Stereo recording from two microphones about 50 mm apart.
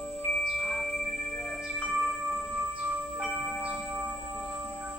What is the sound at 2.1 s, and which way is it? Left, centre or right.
Tubular bells, centre.